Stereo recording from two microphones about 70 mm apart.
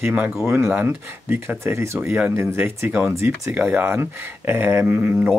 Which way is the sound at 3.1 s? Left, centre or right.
Right.